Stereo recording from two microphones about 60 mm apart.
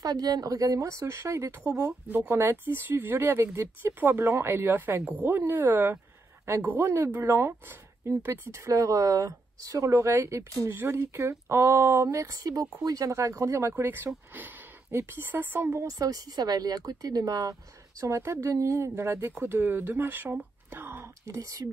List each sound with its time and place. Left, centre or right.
0.0 s a woman's voice: right
2.0 s speech: right
10.7 s speech: right
12.3 s speech: right
13.1 s speech: right
13.8 s speech: right
15.9 s speech: right
18.0 s speech: right
19.4 s speech: right
20.7 s whispering: right
21.3 s speech: right